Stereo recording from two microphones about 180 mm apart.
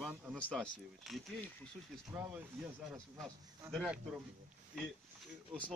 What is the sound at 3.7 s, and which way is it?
Speech, centre (ahead or behind).